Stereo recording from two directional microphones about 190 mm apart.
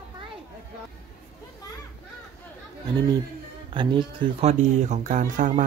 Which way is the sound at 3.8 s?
25° right (ahead or behind).